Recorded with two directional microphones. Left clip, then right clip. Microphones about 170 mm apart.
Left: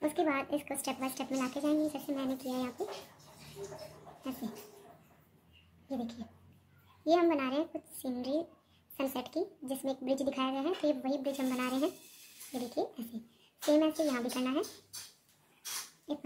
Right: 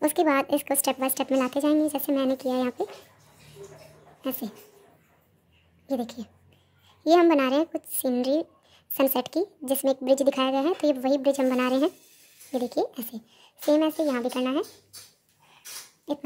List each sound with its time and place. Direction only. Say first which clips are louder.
0.0 s a woman's voice: right 9 dB; 40° right (ahead or behind)
4.2 s speech: right 10 dB; 40° right (ahead or behind)
5.9 s a woman's voice: right 10 dB; 40° right (ahead or behind)
16.1 s speech: right 9 dB; 40° right (ahead or behind)